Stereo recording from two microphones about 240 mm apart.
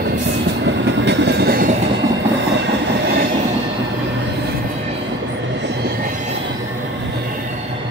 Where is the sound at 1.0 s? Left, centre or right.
Right.